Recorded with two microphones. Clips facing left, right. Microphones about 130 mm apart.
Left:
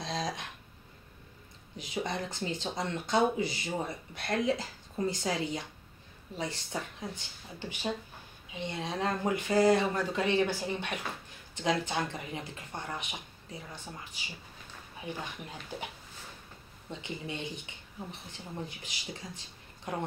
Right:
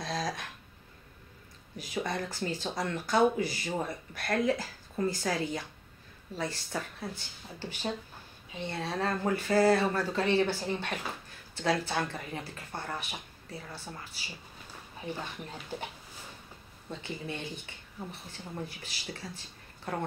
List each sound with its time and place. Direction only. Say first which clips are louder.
0.0 s a sound: right 1 dB; 20° left (ahead or behind)
1.8 s speech: right 1 dB; 20° left (ahead or behind)
16.9 s speech: right 1 dB; 20° left (ahead or behind)